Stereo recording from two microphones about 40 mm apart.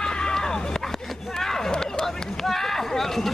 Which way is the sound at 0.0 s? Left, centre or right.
Centre.